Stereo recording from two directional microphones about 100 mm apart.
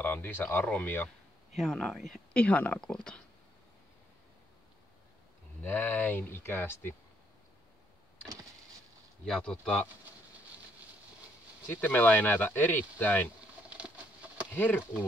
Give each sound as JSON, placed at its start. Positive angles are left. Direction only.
{"t": 0.0, "sound": "speech", "side_deg": 20}
{"t": 1.6, "sound": "speech", "side_deg": 5}
{"t": 2.4, "sound": "speech", "side_deg": 15}
{"t": 5.6, "sound": "speech", "side_deg": 20}
{"t": 9.2, "sound": "speech", "side_deg": 10}
{"t": 11.6, "sound": "speech", "side_deg": 20}
{"t": 13.7, "sound": "patter", "side_deg": -10}
{"t": 14.5, "sound": "speech", "side_deg": 20}